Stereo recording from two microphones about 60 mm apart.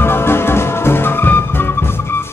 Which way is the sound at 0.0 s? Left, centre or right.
Left.